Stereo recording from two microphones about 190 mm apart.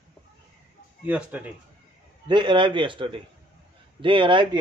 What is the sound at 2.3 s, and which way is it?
Speech, 25° right (ahead or behind).